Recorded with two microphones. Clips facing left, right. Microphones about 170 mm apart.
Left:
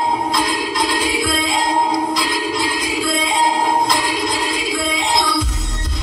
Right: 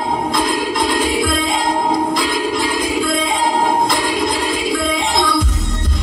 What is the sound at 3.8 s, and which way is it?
Music, 50° right (ahead or behind).